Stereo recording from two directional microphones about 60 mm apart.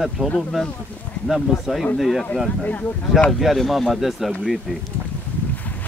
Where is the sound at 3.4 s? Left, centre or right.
Centre.